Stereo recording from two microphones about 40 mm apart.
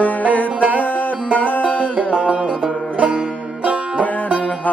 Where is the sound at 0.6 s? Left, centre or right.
Right.